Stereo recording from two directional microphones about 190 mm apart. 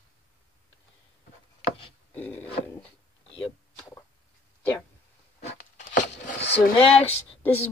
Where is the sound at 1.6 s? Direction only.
30° left (ahead or behind).